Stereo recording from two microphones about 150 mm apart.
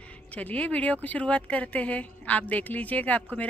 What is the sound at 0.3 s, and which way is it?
A woman's voice, 10° left (ahead or behind).